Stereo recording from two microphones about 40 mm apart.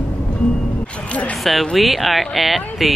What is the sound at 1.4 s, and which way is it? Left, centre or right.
Speech, centre.